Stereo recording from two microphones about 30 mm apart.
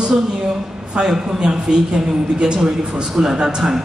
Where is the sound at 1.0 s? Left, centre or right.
Right.